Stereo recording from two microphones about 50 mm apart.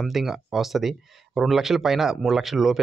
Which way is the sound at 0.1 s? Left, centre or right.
Centre.